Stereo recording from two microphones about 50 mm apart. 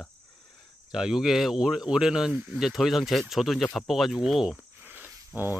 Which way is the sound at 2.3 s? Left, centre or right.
Right.